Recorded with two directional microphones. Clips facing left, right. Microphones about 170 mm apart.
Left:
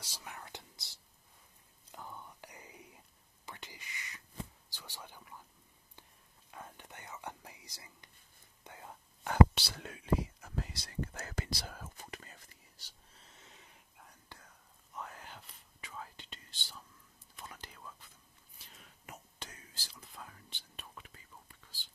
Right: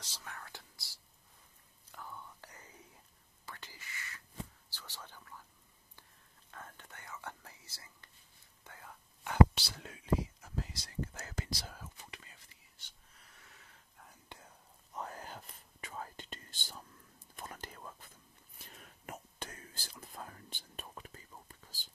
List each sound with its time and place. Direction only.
0.0 s whispering: 15° left (ahead or behind)
6.5 s whispering: 15° left (ahead or behind)
9.6 s whispering: 65° left (ahead or behind); by 13.8 s 20° left (ahead or behind)
14.3 s whispering: 20° right (ahead or behind)
15.0 s whispering: 40° right (ahead or behind)